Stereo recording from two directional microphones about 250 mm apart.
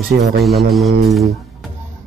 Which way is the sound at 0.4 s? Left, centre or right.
Centre.